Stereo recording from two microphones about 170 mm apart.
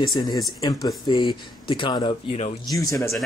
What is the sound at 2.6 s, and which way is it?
Speech, 20° left (ahead or behind).